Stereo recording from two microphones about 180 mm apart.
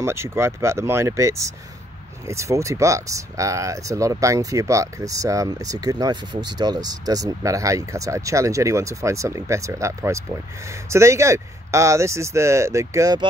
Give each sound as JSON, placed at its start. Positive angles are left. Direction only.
{"t": 0.0, "sound": "speech", "side_deg": -15}